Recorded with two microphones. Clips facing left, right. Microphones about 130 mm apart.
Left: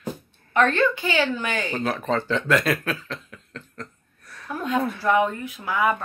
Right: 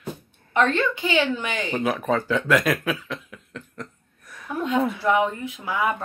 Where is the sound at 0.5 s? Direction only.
20° right (ahead or behind).